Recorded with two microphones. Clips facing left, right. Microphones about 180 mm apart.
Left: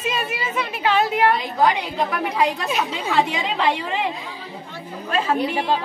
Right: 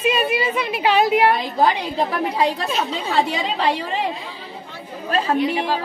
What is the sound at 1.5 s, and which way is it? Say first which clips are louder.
A woman's voice: right 1 dB; 30° right (ahead or behind).